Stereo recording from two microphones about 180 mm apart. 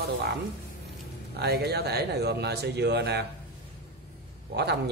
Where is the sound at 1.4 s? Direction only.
60° right (ahead or behind).